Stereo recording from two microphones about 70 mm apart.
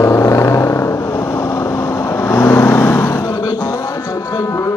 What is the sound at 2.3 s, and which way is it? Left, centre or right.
Vehicle, left.